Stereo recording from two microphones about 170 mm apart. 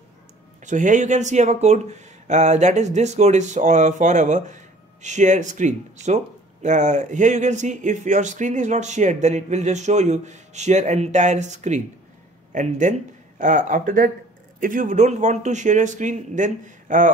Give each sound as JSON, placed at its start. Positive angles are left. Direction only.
{"t": 0.7, "sound": "speech", "side_deg": -45}